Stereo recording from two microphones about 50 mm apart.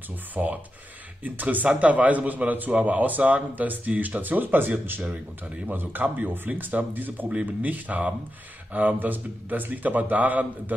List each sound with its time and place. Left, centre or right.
0.3 s speech: right